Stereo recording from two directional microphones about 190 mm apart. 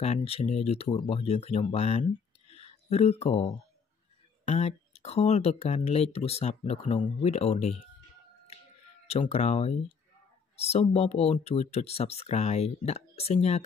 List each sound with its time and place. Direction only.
0.0 s speech: 35° left (ahead or behind)
9.0 s speech: 35° left (ahead or behind)